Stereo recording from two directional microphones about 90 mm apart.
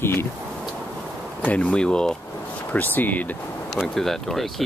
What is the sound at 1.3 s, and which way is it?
Speech, 15° left (ahead or behind).